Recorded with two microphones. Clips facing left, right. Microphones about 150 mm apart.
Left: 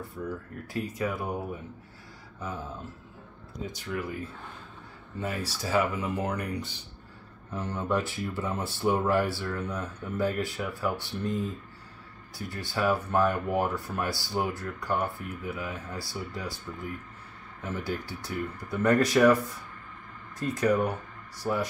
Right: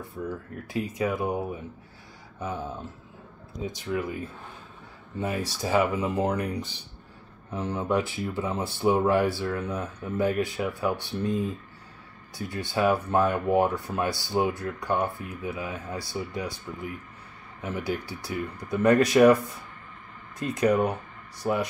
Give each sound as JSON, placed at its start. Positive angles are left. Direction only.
{"t": 0.2, "sound": "speech", "side_deg": -15}
{"t": 3.5, "sound": "speech", "side_deg": -20}
{"t": 5.2, "sound": "speech", "side_deg": -15}
{"t": 7.5, "sound": "speech", "side_deg": -10}
{"t": 20.3, "sound": "speech", "side_deg": -15}